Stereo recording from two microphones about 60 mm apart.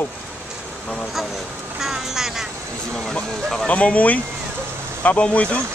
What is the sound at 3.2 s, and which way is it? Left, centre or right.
Speech, centre.